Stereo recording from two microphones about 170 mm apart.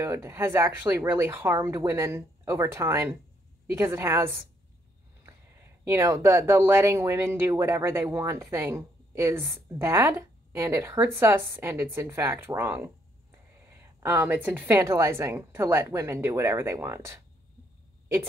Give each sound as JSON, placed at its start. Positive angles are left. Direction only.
{"t": 0.0, "sound": "speech", "side_deg": -15}
{"t": 5.9, "sound": "speech", "side_deg": -15}